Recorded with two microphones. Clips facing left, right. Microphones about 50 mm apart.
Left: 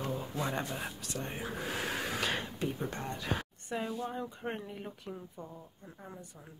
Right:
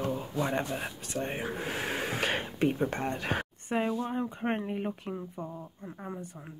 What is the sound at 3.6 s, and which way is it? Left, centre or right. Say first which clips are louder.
Speech: right 6 dB; right.